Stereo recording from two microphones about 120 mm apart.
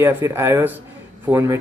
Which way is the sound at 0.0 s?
20° right (ahead or behind).